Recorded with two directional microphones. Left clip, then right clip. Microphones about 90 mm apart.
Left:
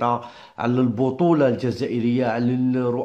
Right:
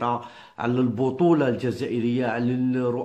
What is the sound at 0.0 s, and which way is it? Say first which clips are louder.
Speech: left 4 dB; 35° left (ahead or behind).